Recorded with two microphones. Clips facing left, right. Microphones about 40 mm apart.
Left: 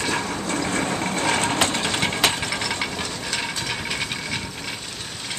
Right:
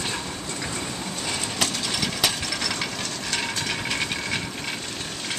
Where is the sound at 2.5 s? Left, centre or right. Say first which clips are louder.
Left 2 dB; centre.